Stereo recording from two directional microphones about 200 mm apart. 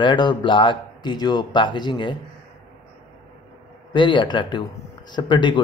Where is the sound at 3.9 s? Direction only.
25° left (ahead or behind).